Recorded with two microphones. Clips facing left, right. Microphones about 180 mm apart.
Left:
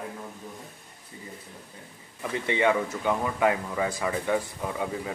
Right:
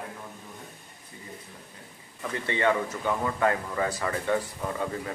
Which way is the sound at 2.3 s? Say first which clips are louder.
Left 2 dB; 15° left (ahead or behind).